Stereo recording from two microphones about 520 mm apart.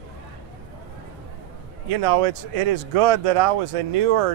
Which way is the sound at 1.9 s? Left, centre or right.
Right.